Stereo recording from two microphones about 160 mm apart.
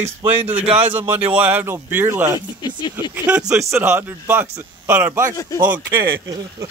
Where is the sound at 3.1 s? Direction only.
5° right (ahead or behind).